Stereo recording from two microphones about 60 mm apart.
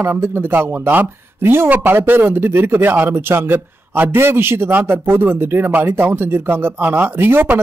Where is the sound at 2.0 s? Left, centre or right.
Right.